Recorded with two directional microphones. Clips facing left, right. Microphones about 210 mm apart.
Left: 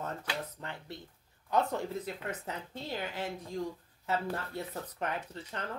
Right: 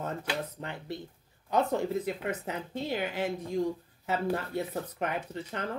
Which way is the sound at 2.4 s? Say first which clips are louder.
Right 6 dB; 15° right (ahead or behind).